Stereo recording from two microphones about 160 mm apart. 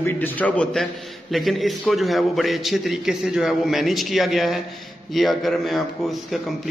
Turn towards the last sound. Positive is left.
turn(degrees=0)  # may be behind; listen again after turning